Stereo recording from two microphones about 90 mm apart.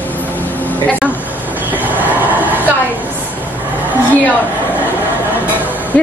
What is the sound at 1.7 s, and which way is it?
Vehicle, 20° right (ahead or behind).